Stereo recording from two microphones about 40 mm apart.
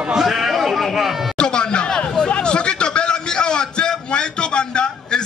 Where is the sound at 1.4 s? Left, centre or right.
Left.